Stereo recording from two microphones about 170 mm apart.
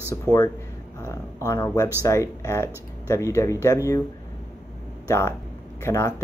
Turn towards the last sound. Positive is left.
turn(degrees=15)  # may be behind; listen again after turning